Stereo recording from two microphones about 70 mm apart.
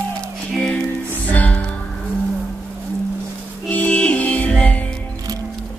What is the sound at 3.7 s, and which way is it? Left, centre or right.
Music, centre.